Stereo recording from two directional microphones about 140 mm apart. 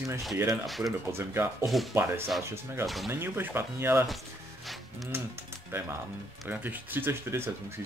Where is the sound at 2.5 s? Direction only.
15° right (ahead or behind).